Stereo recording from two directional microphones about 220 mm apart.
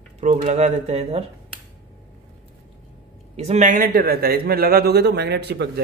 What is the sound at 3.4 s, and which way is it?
Speech, 30° right (ahead or behind).